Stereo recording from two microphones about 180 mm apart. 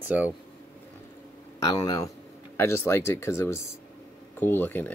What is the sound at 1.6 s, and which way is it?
A man's voice, 20° left (ahead or behind).